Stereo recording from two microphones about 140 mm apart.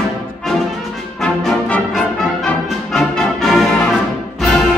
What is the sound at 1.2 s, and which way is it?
Brass instrument, 5° left (ahead or behind).